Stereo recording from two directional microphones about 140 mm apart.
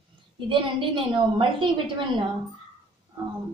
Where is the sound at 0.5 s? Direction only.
35° right (ahead or behind).